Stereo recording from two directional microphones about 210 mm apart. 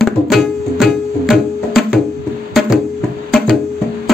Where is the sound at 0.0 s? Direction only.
Centre (ahead or behind).